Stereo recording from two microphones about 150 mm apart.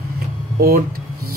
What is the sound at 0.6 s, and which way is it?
Speech, 75° right (ahead or behind).